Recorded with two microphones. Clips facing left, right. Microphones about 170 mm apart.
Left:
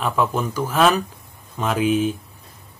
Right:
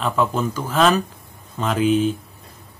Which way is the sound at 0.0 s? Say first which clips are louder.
Right 1 dB; 10° left (ahead or behind).